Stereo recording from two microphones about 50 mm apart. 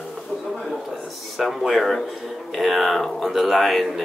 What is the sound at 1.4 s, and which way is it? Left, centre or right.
Speech, centre.